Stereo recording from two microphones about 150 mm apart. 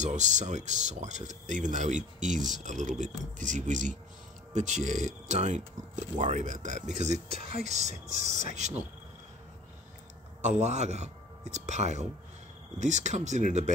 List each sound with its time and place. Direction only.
0.0 s speech: 55° right (ahead or behind)
10.4 s speech: 50° right (ahead or behind)